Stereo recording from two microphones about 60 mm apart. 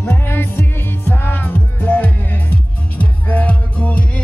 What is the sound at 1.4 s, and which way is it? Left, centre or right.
Music, left.